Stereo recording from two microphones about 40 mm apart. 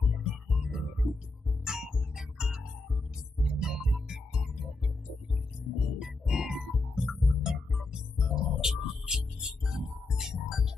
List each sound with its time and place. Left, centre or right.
0.0 s music: centre
5.8 s music: centre